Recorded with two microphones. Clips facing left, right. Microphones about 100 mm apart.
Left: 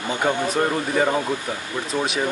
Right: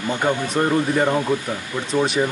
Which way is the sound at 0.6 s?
Centre (ahead or behind).